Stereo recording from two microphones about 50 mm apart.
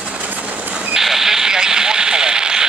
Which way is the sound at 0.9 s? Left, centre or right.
Centre.